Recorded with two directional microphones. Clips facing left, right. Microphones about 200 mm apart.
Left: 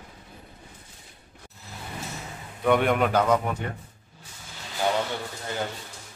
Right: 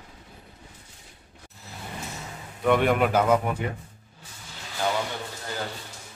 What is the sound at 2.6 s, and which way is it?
Speech, centre (ahead or behind).